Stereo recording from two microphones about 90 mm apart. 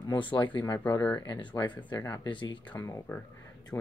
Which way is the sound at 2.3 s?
65° left (ahead or behind).